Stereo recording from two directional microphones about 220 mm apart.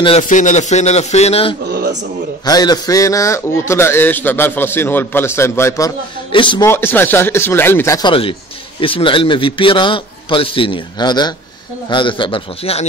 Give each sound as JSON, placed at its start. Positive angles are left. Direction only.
{"t": 0.0, "sound": "a man's voice", "side_deg": 30}
{"t": 1.7, "sound": "a sound", "side_deg": -45}
{"t": 2.4, "sound": "a man's voice", "side_deg": 15}
{"t": 6.7, "sound": "a man's voice", "side_deg": 10}